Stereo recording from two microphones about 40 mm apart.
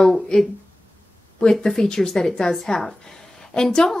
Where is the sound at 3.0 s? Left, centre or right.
Centre.